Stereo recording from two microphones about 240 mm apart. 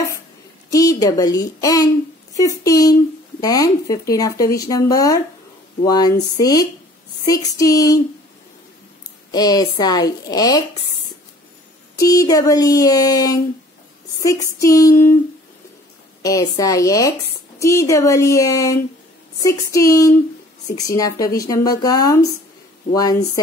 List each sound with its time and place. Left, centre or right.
0.7 s a woman's voice: centre
9.3 s speech: centre
12.0 s speech: centre
16.2 s speech: centre